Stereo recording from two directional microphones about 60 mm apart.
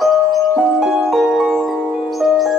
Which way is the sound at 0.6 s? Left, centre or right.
Centre.